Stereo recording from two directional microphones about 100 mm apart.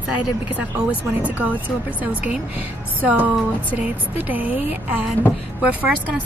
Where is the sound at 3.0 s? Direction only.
15° right (ahead or behind).